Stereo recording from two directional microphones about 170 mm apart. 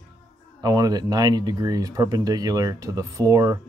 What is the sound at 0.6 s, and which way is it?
Speech, 20° right (ahead or behind).